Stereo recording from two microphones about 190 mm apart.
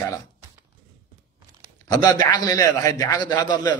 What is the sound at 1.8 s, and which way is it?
A man's voice, 20° left (ahead or behind).